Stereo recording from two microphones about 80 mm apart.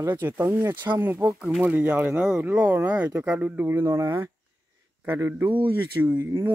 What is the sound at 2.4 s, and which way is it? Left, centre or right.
Speech, right.